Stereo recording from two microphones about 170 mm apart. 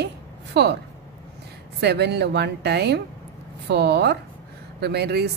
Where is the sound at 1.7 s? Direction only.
75° right (ahead or behind).